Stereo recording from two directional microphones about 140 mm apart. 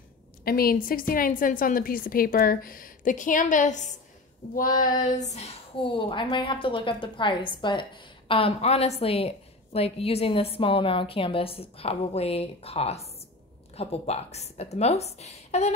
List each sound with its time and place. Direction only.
0.5 s a woman's voice: 90° left; by 3.9 s 60° left (ahead or behind)
4.6 s a sound: 75° left (ahead or behind); by 5.5 s 55° left (ahead or behind)
5.8 s a woman's voice: 35° left (ahead or behind)